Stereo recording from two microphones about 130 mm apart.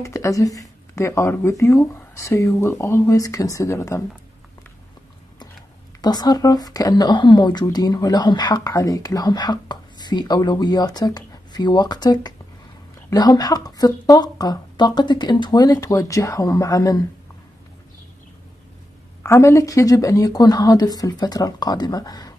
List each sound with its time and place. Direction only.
0.0 s speech: 25° left (ahead or behind)
5.9 s speech: 30° left (ahead or behind)
19.2 s speech: 20° left (ahead or behind)